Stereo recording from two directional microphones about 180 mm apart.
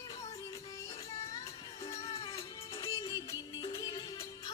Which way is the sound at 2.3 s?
15° left (ahead or behind).